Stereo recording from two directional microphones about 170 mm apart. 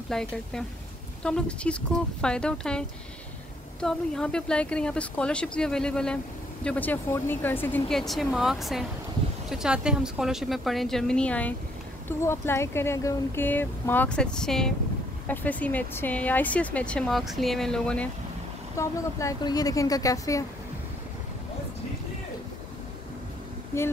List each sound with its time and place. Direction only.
0.1 s speech: 5° left (ahead or behind)
3.8 s speech: 5° left (ahead or behind)
18.8 s speech: 20° left (ahead or behind)